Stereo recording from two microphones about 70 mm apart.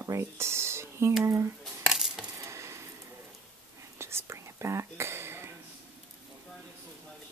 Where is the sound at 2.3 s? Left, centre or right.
Right.